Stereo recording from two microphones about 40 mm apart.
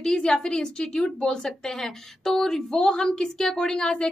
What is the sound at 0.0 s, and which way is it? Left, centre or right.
A woman's voice, centre.